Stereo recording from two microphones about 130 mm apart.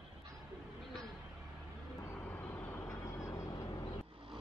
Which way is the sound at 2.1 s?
10° left (ahead or behind).